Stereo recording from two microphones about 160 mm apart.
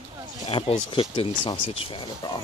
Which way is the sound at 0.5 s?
35° left (ahead or behind).